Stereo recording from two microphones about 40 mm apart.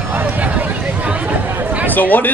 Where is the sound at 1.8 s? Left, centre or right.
Left.